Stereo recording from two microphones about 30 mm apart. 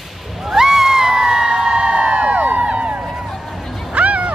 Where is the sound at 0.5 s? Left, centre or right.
Centre; by 2.4 s right.